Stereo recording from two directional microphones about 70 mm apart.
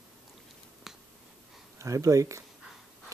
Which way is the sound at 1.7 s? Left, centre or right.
Right.